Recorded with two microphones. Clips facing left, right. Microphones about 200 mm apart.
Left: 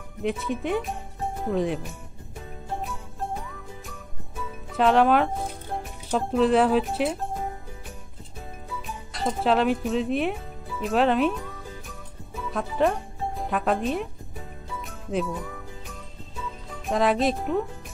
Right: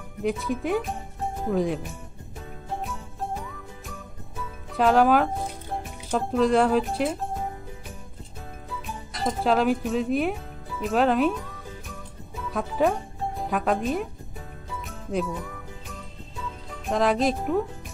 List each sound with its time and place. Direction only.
0.2 s speech: centre (ahead or behind)
2.8 s jingle bell: centre (ahead or behind)
4.7 s speech: centre (ahead or behind)
9.4 s speech: centre (ahead or behind)
12.4 s speech: centre (ahead or behind)
14.9 s music: centre (ahead or behind)
16.8 s speech: centre (ahead or behind)